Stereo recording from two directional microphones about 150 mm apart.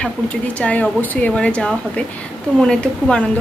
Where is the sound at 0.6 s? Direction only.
10° left (ahead or behind).